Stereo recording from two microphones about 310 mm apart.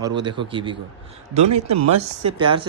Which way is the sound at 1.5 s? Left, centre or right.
Right.